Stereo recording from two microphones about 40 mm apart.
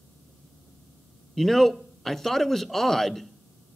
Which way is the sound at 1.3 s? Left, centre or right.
Centre.